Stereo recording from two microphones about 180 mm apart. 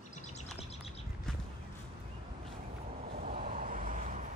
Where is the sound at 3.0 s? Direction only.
55° right (ahead or behind).